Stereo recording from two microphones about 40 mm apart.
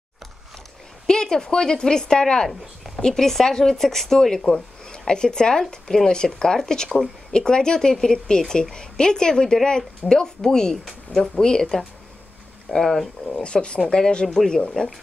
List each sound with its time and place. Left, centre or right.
1.0 s a woman's voice: centre
12.8 s speech: centre
13.4 s speech: left
13.7 s a woman's voice: centre